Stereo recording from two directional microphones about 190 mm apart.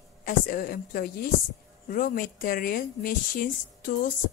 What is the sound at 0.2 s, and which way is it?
Speech, 50° left (ahead or behind).